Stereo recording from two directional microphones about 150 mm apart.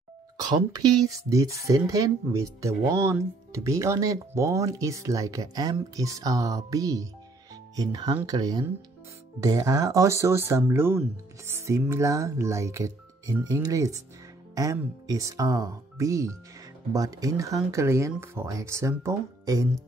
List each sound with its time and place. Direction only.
0.4 s speech: 25° right (ahead or behind)